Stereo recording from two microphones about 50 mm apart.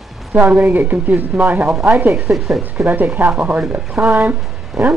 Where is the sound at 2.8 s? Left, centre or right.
Right.